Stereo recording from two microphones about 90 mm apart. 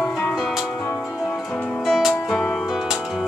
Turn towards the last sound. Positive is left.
turn(degrees=-5)  # may be behind; listen again after turning